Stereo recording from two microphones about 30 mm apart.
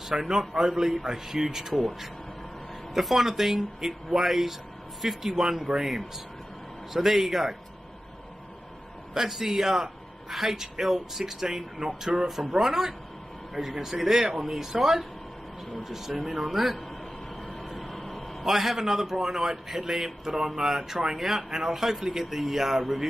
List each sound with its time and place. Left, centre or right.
0.1 s a man's voice: centre
1.7 s a man's voice: centre
9.1 s a man's voice: centre
12.3 s a man's voice: centre
17.6 s a sound: centre
18.4 s a man's voice: centre